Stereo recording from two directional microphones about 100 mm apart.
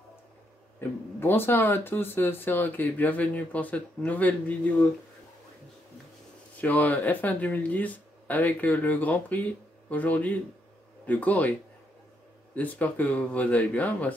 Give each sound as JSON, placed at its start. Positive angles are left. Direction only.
{"t": 0.7, "sound": "speech", "side_deg": 20}
{"t": 6.5, "sound": "speech", "side_deg": 15}
{"t": 12.5, "sound": "speech", "side_deg": 15}